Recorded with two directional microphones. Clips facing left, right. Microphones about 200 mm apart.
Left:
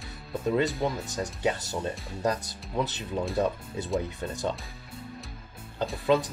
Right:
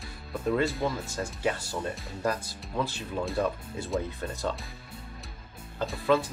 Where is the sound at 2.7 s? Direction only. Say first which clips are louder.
Left 1 dB; 20° left (ahead or behind).